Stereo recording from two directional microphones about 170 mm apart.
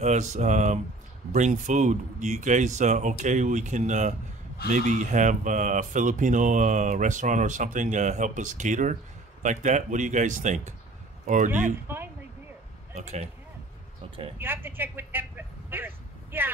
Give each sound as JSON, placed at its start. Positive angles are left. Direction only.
{"t": 0.0, "sound": "speech", "side_deg": -45}
{"t": 11.9, "sound": "a sound", "side_deg": -10}
{"t": 12.9, "sound": "speech", "side_deg": -40}
{"t": 14.4, "sound": "speech", "side_deg": -10}